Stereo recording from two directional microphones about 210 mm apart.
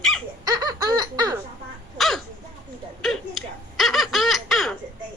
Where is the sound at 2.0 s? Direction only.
Centre (ahead or behind).